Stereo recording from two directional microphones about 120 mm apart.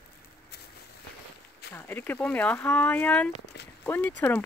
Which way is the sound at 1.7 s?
20° left (ahead or behind).